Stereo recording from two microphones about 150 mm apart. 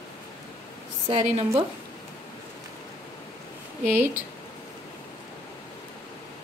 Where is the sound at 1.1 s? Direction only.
45° right (ahead or behind).